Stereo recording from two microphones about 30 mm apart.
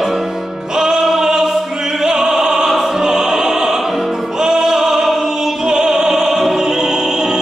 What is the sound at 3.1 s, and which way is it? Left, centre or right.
Music, centre.